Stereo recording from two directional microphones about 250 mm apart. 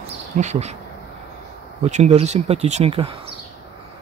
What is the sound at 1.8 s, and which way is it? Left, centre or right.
Speech, right.